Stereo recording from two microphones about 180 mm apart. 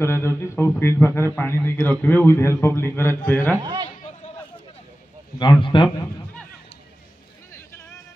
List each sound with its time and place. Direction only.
0.0 s a man's voice: 15° left (ahead or behind)
3.6 s a man's voice: 25° right (ahead or behind)
5.4 s speech: 25° left (ahead or behind)